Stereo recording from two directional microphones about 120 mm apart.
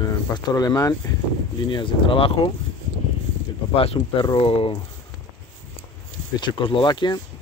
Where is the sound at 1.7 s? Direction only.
45° left (ahead or behind).